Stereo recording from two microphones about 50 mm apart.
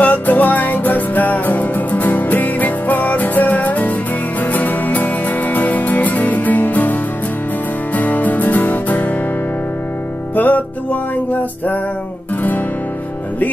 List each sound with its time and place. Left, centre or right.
0.0 s music: left
10.3 s music: left